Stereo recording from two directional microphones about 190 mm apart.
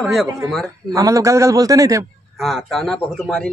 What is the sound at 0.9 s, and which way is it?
A woman's voice, 15° right (ahead or behind).